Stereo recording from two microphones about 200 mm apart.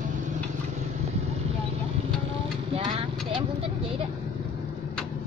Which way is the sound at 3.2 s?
25° right (ahead or behind).